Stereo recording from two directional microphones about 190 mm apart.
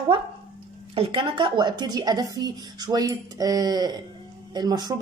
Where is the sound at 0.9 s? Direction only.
25° right (ahead or behind).